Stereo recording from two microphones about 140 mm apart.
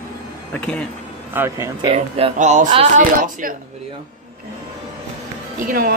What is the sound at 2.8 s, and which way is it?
Speech, 70° right (ahead or behind).